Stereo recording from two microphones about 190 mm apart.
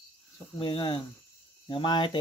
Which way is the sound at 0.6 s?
25° left (ahead or behind).